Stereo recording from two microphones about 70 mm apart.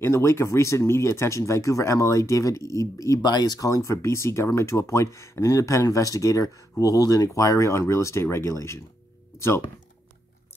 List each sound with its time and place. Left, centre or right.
0.0 s speech: left
3.2 s speech: left
7.3 s speech: left